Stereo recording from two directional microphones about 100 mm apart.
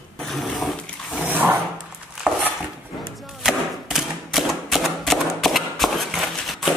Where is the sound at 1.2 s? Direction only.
20° right (ahead or behind).